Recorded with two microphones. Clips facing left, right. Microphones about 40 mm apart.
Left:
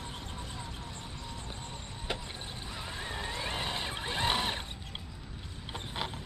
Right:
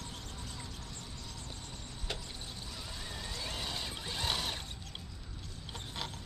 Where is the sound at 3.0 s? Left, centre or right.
Left.